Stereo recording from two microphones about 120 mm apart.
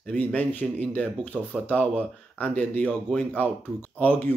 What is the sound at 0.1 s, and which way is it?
Speech, 15° left (ahead or behind).